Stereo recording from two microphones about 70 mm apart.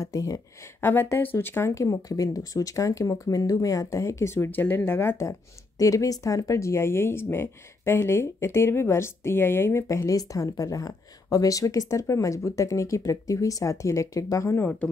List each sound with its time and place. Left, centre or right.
0.0 s speech: left
0.7 s speech: left
1.8 s speech: left
4.5 s speech: left
5.1 s speech: left